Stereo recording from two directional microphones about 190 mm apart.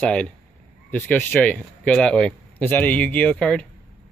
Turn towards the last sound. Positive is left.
turn(degrees=5)  # may be behind; listen again after turning